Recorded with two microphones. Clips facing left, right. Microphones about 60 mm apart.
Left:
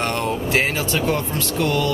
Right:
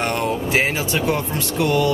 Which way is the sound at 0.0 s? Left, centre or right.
Centre.